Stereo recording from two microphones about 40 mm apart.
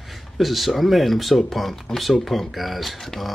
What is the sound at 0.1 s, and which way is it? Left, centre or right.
Speech, centre.